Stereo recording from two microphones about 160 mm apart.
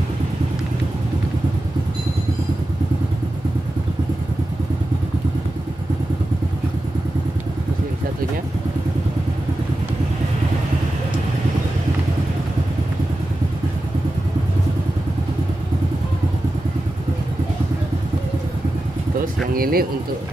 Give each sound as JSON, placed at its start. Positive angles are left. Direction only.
{"t": 19.5, "sound": "speech", "side_deg": -65}